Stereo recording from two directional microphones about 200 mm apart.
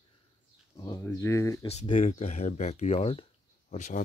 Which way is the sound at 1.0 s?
15° left (ahead or behind).